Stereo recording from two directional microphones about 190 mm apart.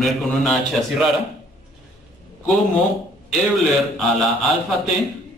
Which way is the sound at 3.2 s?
Centre (ahead or behind).